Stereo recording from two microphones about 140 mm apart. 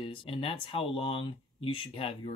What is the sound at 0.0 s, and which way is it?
Speech, 40° left (ahead or behind).